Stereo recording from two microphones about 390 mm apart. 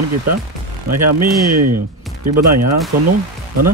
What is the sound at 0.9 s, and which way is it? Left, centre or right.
Speech, right.